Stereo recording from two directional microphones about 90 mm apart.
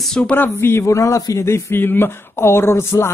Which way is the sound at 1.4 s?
25° left (ahead or behind).